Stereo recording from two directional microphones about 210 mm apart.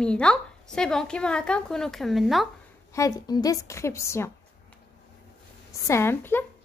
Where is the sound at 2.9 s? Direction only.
15° left (ahead or behind).